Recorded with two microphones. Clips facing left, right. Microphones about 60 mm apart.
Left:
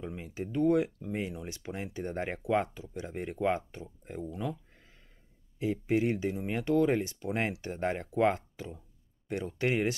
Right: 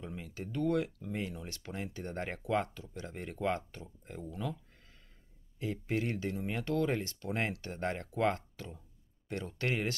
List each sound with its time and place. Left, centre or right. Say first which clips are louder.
0.0 s speech: left 5 dB; centre